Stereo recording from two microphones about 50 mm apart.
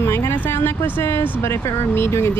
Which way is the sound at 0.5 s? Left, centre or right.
Left.